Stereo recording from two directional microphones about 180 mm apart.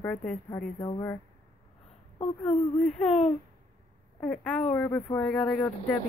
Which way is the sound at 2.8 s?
5° left (ahead or behind).